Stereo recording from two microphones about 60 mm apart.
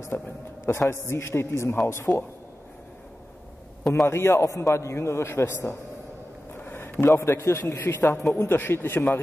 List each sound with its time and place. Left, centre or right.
0.1 s a man's voice: left
2.1 s a man's voice: left
3.9 s a man's voice: left
6.6 s a sound: left
7.1 s a man's voice: left